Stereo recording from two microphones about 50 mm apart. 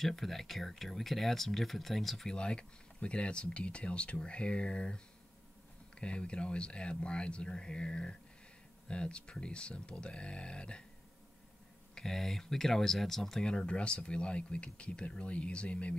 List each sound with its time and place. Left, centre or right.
0.0 s speech: centre
2.3 s speech: centre
11.9 s speech: centre
13.5 s speech: centre